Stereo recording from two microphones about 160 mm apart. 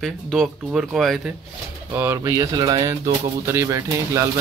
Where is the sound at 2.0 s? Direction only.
15° right (ahead or behind).